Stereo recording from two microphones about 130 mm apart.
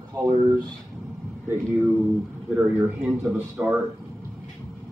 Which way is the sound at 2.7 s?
15° right (ahead or behind).